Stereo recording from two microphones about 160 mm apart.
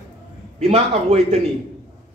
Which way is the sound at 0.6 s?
40° right (ahead or behind).